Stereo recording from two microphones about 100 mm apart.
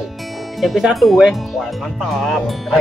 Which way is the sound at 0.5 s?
Centre (ahead or behind).